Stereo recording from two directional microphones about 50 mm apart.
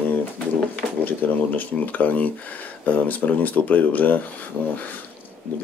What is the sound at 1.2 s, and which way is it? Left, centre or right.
Speech, left.